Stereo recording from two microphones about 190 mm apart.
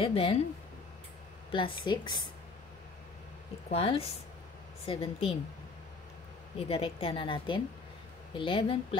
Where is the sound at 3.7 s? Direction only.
30° left (ahead or behind).